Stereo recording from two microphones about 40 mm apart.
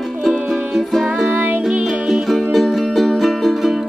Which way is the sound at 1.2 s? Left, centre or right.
Right.